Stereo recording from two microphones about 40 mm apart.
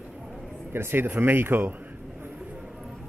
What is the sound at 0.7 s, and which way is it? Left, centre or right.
Speech, right.